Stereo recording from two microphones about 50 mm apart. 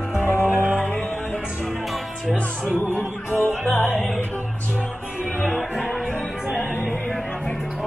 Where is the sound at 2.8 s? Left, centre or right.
Left.